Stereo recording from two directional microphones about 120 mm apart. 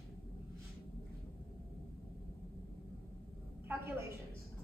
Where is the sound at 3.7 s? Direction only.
20° right (ahead or behind).